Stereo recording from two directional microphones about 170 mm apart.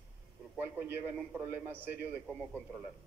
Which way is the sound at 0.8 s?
10° right (ahead or behind).